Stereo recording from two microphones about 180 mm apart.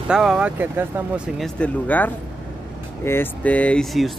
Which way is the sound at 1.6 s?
10° left (ahead or behind).